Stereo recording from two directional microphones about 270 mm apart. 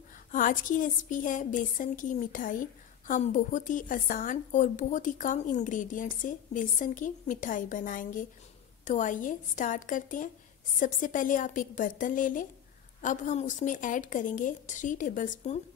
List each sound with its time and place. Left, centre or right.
0.3 s a woman's voice: left